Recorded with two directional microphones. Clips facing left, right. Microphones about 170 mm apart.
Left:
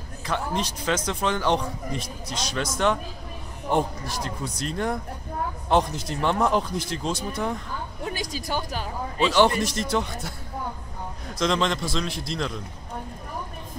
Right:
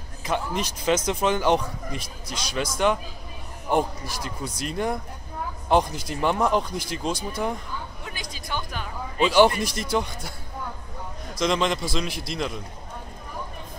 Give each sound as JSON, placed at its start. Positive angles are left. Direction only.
{"t": 0.3, "sound": "speech", "side_deg": -15}
{"t": 2.0, "sound": "a man's voice", "side_deg": 25}
{"t": 2.5, "sound": "speech", "side_deg": -5}
{"t": 8.0, "sound": "speech", "side_deg": 40}
{"t": 9.2, "sound": "speech", "side_deg": -10}
{"t": 11.3, "sound": "speech", "side_deg": -5}